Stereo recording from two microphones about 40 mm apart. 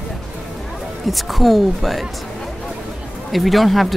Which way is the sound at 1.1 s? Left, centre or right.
Centre.